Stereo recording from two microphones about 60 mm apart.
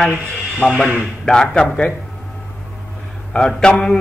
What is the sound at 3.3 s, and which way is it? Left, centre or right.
Speech, centre.